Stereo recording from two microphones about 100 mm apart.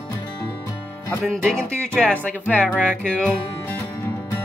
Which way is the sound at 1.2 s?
Centre (ahead or behind).